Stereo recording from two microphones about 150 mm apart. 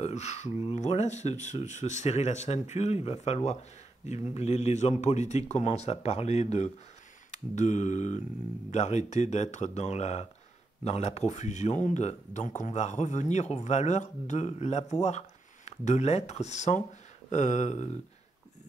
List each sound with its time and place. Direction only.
0.0 s speech: 50° left (ahead or behind)